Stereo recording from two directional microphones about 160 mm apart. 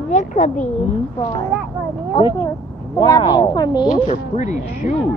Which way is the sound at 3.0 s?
25° left (ahead or behind).